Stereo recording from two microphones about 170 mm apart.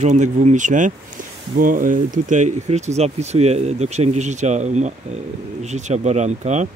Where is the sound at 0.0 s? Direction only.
45° right (ahead or behind).